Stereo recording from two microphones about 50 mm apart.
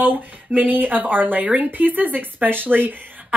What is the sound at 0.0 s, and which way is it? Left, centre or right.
Speech, right.